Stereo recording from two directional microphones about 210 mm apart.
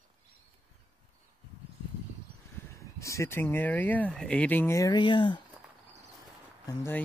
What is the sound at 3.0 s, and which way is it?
Speech, 15° left (ahead or behind).